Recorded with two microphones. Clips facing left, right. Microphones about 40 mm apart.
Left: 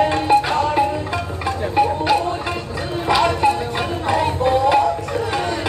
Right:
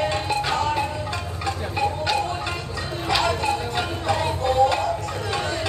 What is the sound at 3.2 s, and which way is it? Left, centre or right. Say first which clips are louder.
Music: left 6 dB; left.